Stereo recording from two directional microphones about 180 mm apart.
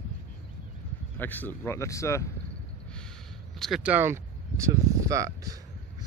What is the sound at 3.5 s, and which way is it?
Speech, centre (ahead or behind).